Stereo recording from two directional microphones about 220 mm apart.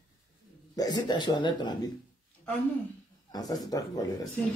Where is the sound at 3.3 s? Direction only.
15° left (ahead or behind).